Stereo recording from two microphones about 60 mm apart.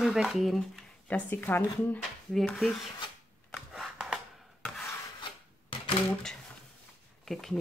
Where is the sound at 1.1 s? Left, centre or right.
Left.